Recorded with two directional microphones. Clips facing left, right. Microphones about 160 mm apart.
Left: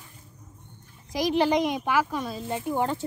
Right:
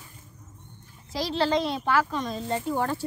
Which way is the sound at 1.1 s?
15° left (ahead or behind).